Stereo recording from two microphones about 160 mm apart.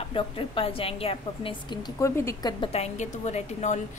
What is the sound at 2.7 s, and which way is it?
A woman's voice, 45° left (ahead or behind).